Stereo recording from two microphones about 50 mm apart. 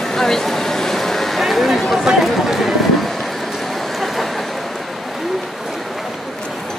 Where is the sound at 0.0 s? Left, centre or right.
Centre.